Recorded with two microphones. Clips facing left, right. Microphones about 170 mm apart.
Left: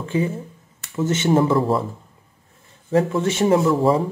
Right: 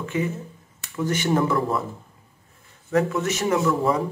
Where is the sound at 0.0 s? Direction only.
30° left (ahead or behind).